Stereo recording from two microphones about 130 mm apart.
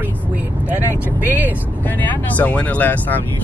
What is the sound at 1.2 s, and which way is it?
Speech, 15° right (ahead or behind).